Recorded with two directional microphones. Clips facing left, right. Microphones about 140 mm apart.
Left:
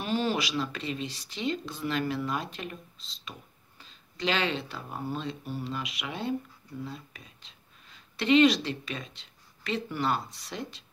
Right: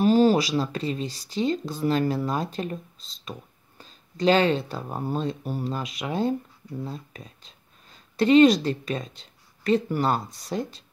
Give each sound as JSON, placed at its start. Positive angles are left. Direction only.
{"t": 0.0, "sound": "speech", "side_deg": -40}